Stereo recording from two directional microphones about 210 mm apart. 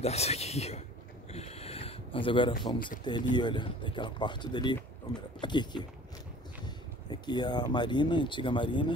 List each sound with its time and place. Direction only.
0.0 s speech: 30° left (ahead or behind)
1.3 s a sound: 30° left (ahead or behind)
3.0 s speech: 20° left (ahead or behind)
7.1 s speech: 20° left (ahead or behind)